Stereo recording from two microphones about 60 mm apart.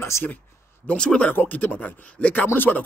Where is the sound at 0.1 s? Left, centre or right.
Left.